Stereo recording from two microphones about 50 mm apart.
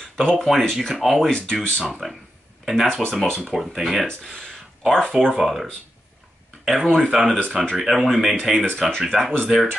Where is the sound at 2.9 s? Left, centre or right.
Centre.